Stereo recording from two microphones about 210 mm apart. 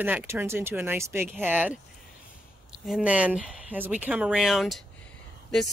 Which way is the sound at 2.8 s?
5° right (ahead or behind).